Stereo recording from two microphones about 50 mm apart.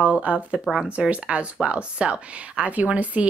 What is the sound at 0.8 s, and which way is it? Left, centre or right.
A woman's voice, right.